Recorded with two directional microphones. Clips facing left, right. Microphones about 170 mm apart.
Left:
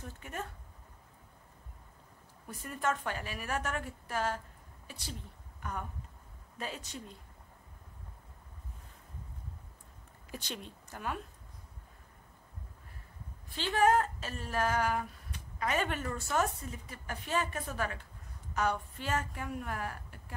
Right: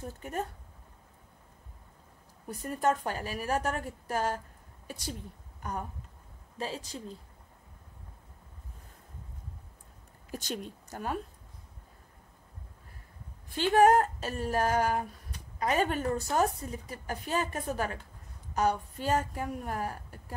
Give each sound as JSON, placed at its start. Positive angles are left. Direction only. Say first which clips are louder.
{"t": 0.0, "sound": "speech", "louder": "right 6 dB", "side_deg": -40}
{"t": 2.4, "sound": "speech", "louder": "right 6 dB", "side_deg": -40}
{"t": 10.3, "sound": "speech", "louder": "right 6 dB", "side_deg": -45}
{"t": 13.6, "sound": "speech", "louder": "right 5 dB", "side_deg": -45}